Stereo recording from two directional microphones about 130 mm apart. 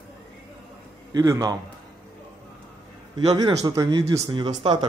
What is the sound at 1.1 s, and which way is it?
Speech, 25° right (ahead or behind).